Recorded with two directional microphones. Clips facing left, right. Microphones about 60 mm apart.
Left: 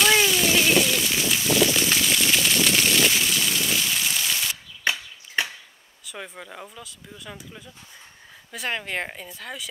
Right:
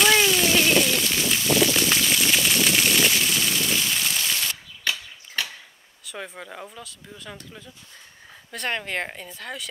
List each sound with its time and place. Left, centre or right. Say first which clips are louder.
0.0 s rain on surface: right 1 dB; centre
4.8 s chop: left 3 dB; left
6.0 s speech: right 2 dB; centre